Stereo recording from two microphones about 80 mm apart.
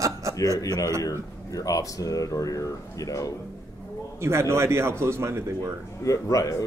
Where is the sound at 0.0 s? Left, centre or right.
Right.